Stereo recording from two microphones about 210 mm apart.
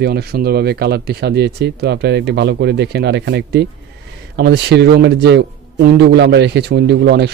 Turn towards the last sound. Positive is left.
turn(degrees=-55)  # may be behind; listen again after turning